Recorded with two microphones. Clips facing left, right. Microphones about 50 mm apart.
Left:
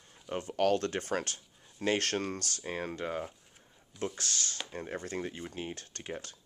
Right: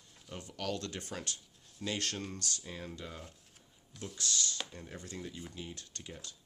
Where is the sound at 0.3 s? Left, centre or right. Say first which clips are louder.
Left 11 dB; left.